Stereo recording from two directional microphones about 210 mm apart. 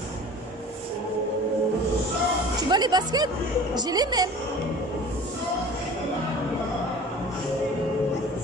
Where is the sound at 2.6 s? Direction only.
20° right (ahead or behind).